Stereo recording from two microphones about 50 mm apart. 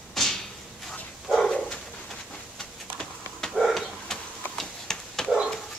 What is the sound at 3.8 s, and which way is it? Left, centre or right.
Dog, centre.